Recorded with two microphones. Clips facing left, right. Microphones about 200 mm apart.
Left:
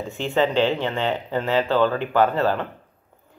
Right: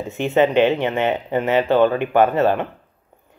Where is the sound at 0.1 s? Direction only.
20° right (ahead or behind).